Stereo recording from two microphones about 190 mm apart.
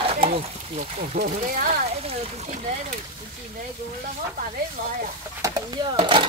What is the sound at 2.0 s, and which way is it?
Speech, 35° right (ahead or behind).